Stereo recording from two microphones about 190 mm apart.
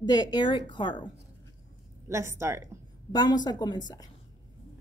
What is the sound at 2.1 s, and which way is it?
Speech, 15° right (ahead or behind).